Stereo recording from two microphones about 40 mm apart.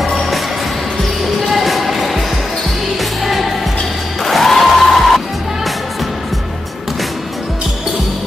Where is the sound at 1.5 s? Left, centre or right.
Centre.